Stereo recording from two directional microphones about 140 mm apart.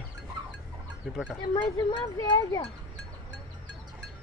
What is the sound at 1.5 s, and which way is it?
Speech, 35° left (ahead or behind).